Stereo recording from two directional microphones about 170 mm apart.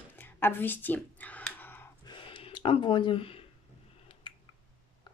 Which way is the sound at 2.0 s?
30° left (ahead or behind).